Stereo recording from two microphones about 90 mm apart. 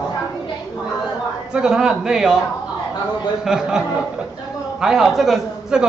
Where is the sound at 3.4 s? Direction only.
5° right (ahead or behind).